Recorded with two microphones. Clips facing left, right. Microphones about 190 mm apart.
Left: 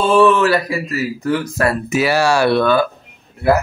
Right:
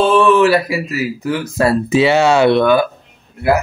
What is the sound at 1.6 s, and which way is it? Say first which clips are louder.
Speech: right 8 dB; 30° right (ahead or behind).